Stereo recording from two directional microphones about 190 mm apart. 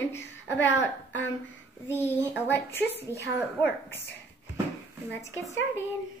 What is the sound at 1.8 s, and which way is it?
A woman's voice, 10° left (ahead or behind).